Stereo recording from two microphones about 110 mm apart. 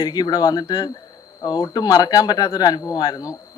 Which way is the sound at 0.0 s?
40° left (ahead or behind).